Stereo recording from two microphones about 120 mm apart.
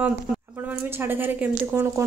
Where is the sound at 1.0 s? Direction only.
15° right (ahead or behind).